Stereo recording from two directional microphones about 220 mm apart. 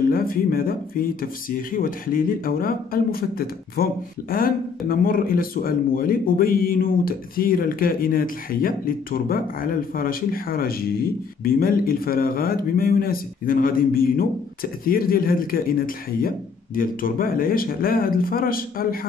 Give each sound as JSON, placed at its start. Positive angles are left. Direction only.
{"t": 0.1, "sound": "speech", "side_deg": 40}